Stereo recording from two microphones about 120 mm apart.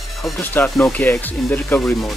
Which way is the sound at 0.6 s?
Centre (ahead or behind).